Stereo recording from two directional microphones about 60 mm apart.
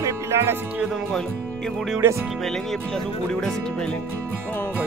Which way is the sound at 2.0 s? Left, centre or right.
Right.